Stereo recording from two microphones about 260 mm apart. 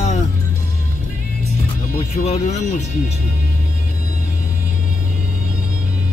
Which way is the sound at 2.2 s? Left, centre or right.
Left.